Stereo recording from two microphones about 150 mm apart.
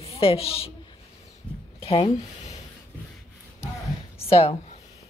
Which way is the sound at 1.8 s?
40° left (ahead or behind).